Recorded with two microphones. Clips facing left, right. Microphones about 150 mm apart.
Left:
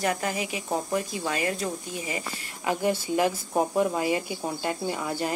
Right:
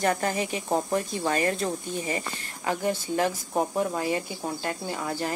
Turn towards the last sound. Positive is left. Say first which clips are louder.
# left 1 dB
turn(degrees=15)  # may be behind; listen again after turning